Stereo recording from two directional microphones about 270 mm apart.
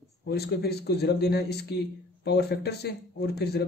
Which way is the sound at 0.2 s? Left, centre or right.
Left.